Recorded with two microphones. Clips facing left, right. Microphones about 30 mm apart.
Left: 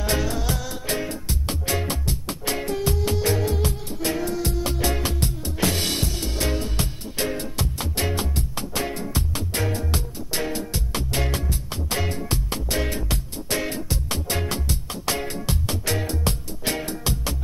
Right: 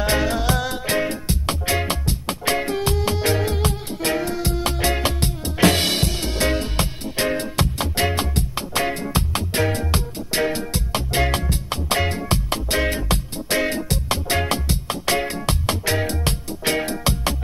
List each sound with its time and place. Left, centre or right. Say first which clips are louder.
0.0 s music: right 5 dB; right
1.7 s music: right 3 dB; right
5.4 s music: right 9 dB; right
5.8 s music: right 4 dB; right
13.8 s music: right 5 dB; right